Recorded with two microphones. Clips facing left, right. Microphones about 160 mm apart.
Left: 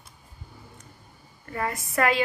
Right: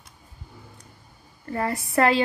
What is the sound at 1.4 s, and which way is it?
Speech, 35° right (ahead or behind).